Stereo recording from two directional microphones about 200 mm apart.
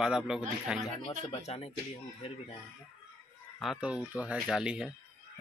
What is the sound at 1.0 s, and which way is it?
Speech, 30° left (ahead or behind).